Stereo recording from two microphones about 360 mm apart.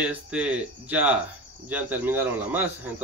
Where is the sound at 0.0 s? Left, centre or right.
Centre.